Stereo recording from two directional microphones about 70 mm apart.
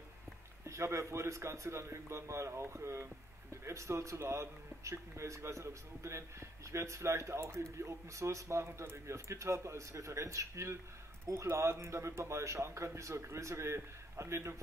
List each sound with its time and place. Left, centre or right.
0.7 s speech: right